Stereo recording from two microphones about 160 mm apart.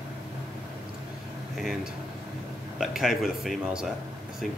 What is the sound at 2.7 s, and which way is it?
A man's voice, centre (ahead or behind).